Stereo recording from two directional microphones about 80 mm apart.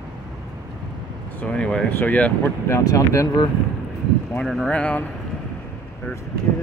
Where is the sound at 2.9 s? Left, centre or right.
Left.